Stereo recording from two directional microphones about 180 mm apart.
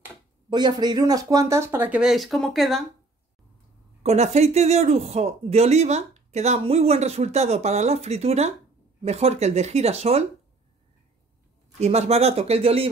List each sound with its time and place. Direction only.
0.5 s speech: 25° right (ahead or behind); by 2.8 s centre (ahead or behind)
4.0 s speech: 35° right (ahead or behind)
11.8 s speech: 35° right (ahead or behind)